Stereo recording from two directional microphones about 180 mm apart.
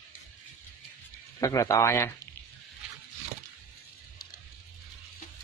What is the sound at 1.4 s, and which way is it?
Speech, 20° left (ahead or behind).